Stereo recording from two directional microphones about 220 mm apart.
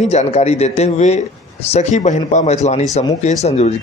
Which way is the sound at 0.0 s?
30° left (ahead or behind).